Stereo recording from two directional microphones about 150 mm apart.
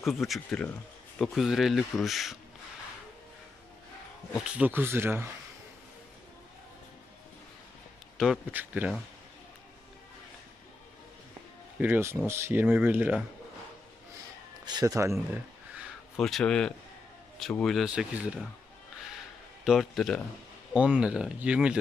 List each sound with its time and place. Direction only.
0.0 s speech: centre (ahead or behind)
4.4 s speech: 5° right (ahead or behind)
8.2 s speech: 5° right (ahead or behind)
11.8 s speech: 15° right (ahead or behind)
14.6 s speech: 25° right (ahead or behind)
16.2 s speech: centre (ahead or behind)
19.6 s speech: centre (ahead or behind)